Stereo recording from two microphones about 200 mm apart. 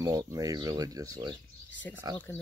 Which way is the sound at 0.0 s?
20° right (ahead or behind).